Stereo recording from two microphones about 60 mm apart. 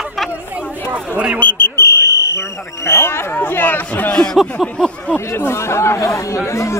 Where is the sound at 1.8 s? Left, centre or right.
Left.